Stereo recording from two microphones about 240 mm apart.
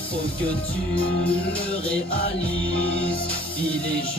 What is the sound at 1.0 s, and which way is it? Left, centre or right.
Music, centre.